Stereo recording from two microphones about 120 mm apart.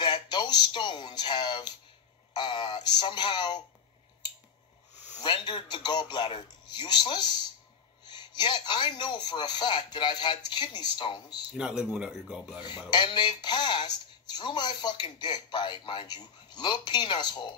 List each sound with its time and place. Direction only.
0.0 s speech: 40° left (ahead or behind)
5.2 s speech: 40° left (ahead or behind)
12.6 s speech: 40° left (ahead or behind)